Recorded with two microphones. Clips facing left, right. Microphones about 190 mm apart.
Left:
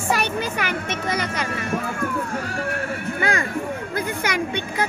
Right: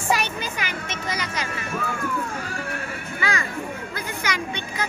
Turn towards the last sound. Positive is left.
turn(degrees=55)  # may be behind; listen again after turning